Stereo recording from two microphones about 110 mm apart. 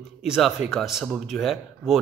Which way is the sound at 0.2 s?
5° right (ahead or behind).